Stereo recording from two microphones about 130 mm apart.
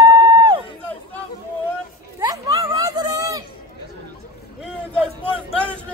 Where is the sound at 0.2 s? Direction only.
35° right (ahead or behind).